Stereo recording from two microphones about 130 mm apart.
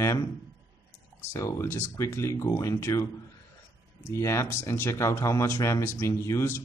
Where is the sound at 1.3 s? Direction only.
20° left (ahead or behind).